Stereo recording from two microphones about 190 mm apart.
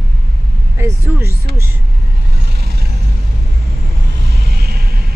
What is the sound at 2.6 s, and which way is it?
Vehicle, 55° right (ahead or behind).